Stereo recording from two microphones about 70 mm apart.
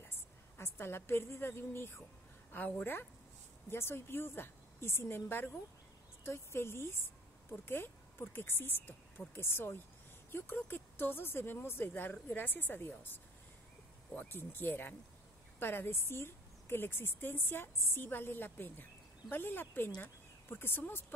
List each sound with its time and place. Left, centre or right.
0.0 s a woman's voice: left